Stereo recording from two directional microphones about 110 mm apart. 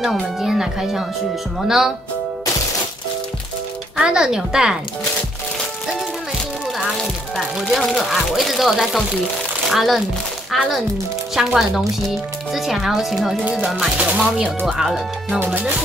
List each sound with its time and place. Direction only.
0.0 s speech: 5° right (ahead or behind)
3.9 s a woman's voice: 5° right (ahead or behind)
7.0 s a woman's voice: centre (ahead or behind)
15.3 s a woman's voice: 15° right (ahead or behind)